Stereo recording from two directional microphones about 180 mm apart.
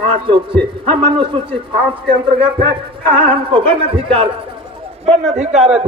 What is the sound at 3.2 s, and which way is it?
A man's voice, 30° right (ahead or behind).